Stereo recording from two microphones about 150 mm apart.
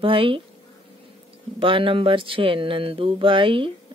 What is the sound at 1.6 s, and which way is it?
Speech, 35° right (ahead or behind).